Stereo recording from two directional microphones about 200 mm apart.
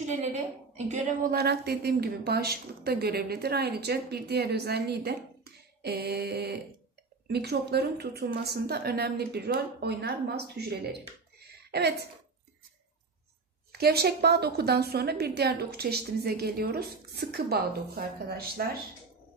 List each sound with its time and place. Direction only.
0.8 s a woman's voice: 35° right (ahead or behind)
1.3 s a woman's voice: 55° right (ahead or behind)
13.7 s a woman's voice: 50° right (ahead or behind)